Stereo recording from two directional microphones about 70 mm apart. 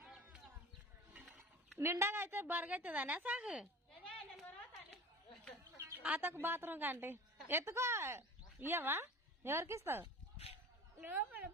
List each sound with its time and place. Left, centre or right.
0.0 s a sound: centre
1.8 s a woman's voice: right; by 3.6 s centre
6.0 s a woman's voice: right
11.0 s speech: right